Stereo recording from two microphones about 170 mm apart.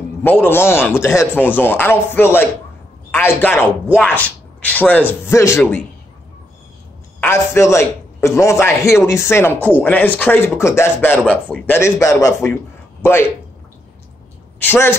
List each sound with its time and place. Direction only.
0.2 s speech: 10° left (ahead or behind)
7.2 s a man's voice: 15° left (ahead or behind)
14.6 s speech: 15° left (ahead or behind)